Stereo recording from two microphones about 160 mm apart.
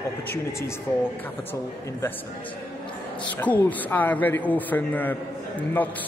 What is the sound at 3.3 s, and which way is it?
A man's voice, 10° left (ahead or behind).